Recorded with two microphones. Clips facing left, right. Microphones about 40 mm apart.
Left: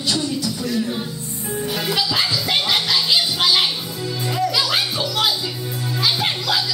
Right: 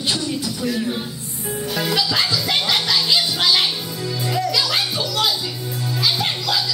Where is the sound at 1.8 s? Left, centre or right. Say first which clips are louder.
Right 2 dB; centre.